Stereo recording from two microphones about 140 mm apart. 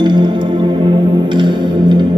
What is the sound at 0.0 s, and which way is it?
Music, 35° right (ahead or behind).